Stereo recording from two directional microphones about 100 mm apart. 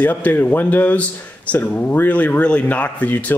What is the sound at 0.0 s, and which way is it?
Speech, 20° left (ahead or behind).